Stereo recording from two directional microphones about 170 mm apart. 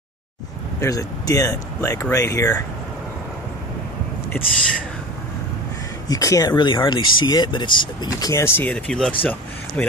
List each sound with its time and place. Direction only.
0.7 s speech: 20° left (ahead or behind)
6.0 s speech: 20° left (ahead or behind)